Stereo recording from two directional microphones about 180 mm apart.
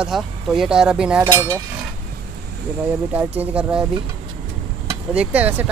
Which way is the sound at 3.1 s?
10° right (ahead or behind).